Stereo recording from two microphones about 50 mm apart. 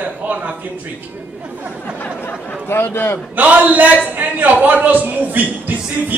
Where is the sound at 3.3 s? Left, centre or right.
Right.